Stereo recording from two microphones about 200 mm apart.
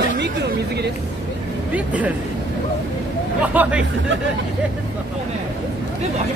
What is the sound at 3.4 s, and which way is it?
Speech, 5° right (ahead or behind).